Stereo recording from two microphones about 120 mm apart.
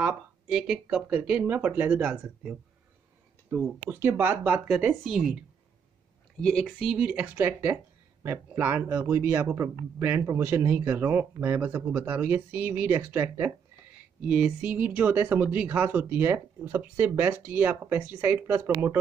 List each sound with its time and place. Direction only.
0.5 s speech: 5° right (ahead or behind)
4.0 s speech: 20° right (ahead or behind)
5.0 s a woman's voice: centre (ahead or behind)
6.4 s speech: 5° left (ahead or behind)
6.9 s speech: 10° right (ahead or behind)